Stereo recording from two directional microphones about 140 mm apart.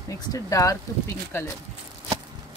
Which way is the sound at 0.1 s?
25° left (ahead or behind).